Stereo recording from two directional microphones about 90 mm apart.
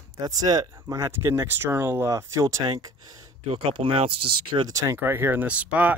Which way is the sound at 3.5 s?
85° right.